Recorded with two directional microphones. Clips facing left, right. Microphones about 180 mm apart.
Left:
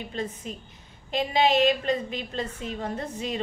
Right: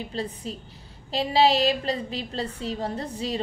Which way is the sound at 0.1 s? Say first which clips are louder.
Right 1 dB; 35° right (ahead or behind).